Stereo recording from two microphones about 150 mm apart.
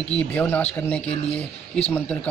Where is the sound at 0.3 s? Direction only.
10° left (ahead or behind).